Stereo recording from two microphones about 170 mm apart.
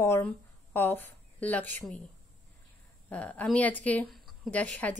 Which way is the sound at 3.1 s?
10° left (ahead or behind).